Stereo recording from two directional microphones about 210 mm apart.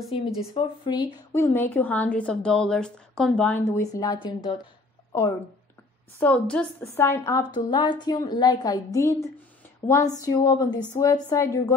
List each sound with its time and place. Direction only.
0.6 s a woman's voice: 20° left (ahead or behind)
6.1 s a woman's voice: 5° left (ahead or behind)